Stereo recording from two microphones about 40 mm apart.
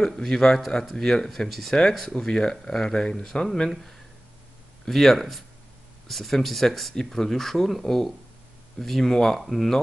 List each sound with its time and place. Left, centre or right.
0.0 s speech: centre
2.1 s speech: left
4.8 s speech: centre